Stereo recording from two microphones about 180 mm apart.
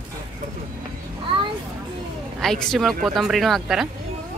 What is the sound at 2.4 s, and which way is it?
Speech, centre (ahead or behind).